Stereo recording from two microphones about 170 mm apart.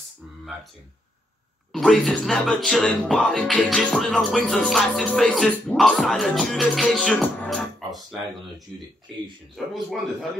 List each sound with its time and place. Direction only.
1.7 s speech: 5° left (ahead or behind)